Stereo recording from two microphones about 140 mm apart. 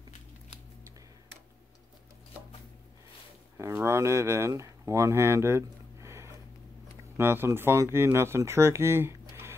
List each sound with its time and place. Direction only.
3.8 s speech: 20° right (ahead or behind)